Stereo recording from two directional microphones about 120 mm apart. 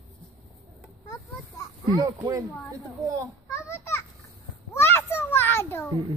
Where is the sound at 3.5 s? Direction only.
20° left (ahead or behind).